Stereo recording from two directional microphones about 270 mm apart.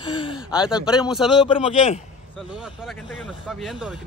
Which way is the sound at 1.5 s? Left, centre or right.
Left.